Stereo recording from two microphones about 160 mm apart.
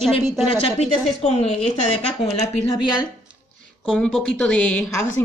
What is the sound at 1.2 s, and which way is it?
Speech, 45° left (ahead or behind).